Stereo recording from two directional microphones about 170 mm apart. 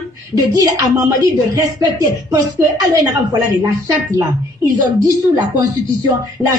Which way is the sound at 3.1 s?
20° right (ahead or behind).